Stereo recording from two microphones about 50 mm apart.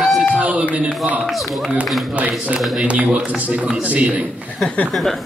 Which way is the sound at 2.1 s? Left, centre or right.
Right.